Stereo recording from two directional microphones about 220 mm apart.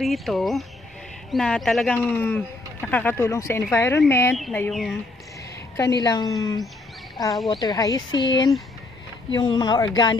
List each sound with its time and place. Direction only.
0.0 s speech: centre (ahead or behind)
5.9 s speech: 15° left (ahead or behind)